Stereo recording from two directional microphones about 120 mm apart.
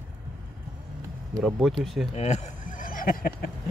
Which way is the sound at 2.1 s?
70° left (ahead or behind).